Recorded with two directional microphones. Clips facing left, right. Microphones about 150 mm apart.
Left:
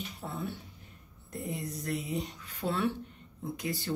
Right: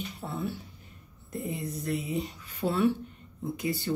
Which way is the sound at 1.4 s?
Centre (ahead or behind).